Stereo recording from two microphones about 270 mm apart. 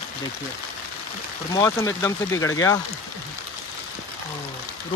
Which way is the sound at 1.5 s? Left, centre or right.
Centre.